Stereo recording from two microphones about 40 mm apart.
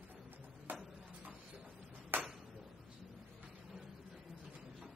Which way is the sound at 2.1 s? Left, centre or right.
Right.